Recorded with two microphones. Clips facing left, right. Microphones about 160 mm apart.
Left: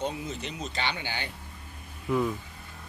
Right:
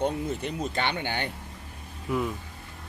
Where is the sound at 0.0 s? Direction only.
55° right (ahead or behind).